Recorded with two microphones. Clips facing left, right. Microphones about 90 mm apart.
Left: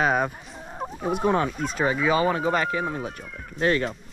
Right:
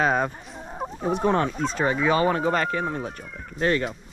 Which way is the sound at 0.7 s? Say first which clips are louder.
Right 1 dB; centre (ahead or behind).